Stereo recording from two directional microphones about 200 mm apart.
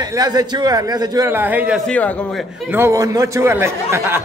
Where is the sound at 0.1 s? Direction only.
20° right (ahead or behind).